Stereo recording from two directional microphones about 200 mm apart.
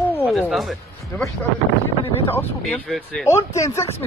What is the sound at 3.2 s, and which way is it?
Speech, 15° left (ahead or behind).